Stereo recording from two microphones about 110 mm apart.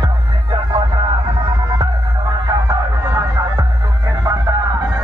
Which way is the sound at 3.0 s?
25° right (ahead or behind).